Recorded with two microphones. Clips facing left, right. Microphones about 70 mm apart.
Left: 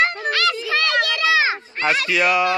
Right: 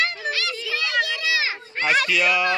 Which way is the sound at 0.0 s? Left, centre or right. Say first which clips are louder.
Left 6 dB; left.